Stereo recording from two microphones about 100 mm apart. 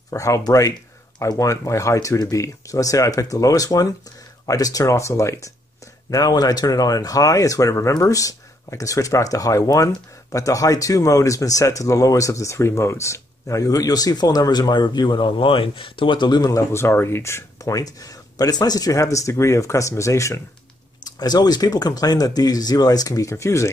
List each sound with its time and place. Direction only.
0.1 s speech: 35° left (ahead or behind)
21.0 s speech: 40° left (ahead or behind)